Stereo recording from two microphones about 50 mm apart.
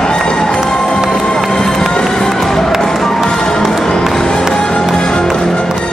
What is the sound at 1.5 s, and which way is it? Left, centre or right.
Run, centre.